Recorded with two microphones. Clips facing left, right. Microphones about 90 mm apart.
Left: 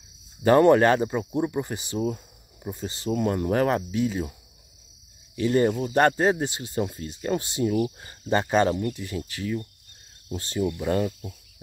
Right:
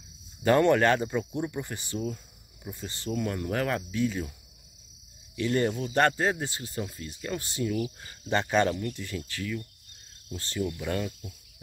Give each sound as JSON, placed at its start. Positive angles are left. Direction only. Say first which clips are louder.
{"t": 0.4, "sound": "speech", "louder": "left 5 dB", "side_deg": 15}
{"t": 5.4, "sound": "speech", "louder": "left 5 dB", "side_deg": 15}
{"t": 7.7, "sound": "speech", "louder": "left 6 dB", "side_deg": 40}
{"t": 8.3, "sound": "speech", "louder": "left 3 dB", "side_deg": 10}
{"t": 8.6, "sound": "speech", "louder": "left 4 dB", "side_deg": 35}
{"t": 8.9, "sound": "speech", "louder": "left 3 dB", "side_deg": 15}